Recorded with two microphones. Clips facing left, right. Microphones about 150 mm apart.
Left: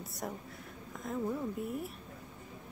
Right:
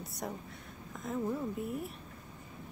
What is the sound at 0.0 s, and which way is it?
Speech, centre (ahead or behind).